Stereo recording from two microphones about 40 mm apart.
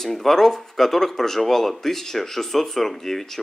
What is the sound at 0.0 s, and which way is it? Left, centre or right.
Speech, centre.